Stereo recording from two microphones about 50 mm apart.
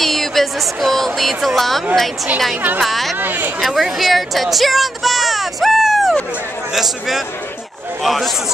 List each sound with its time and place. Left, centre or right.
0.0 s speech: centre
2.8 s a man's voice: centre
3.2 s speech: right
3.6 s a man's voice: centre